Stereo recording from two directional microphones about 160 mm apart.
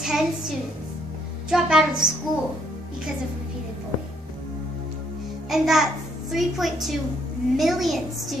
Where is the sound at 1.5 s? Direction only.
5° right (ahead or behind).